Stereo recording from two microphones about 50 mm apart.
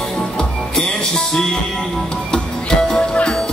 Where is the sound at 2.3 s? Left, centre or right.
Centre.